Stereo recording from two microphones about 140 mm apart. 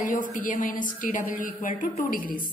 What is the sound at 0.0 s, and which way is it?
A woman's voice, 65° left (ahead or behind).